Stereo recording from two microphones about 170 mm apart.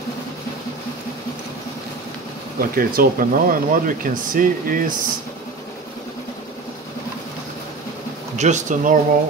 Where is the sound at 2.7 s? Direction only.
60° right (ahead or behind).